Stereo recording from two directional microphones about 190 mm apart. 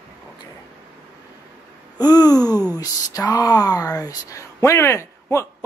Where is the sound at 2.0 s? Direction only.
20° left (ahead or behind).